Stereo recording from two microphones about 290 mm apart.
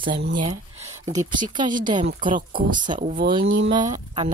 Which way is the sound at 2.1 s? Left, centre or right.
Right.